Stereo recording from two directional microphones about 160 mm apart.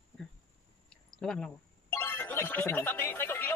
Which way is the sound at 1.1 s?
5° left (ahead or behind).